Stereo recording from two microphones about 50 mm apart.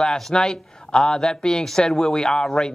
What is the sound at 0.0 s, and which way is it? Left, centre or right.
Speech, centre.